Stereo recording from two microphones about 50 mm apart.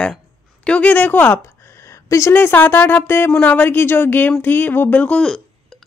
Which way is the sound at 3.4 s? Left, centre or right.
Left.